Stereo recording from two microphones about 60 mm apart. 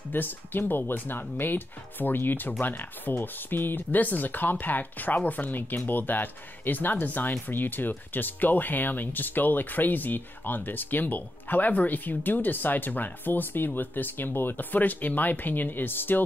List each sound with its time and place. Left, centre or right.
0.1 s speech: left